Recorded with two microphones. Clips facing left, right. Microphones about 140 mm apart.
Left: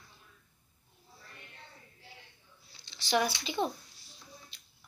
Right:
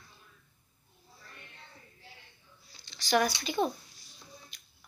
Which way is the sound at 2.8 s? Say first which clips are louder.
Right 2 dB; 25° left (ahead or behind).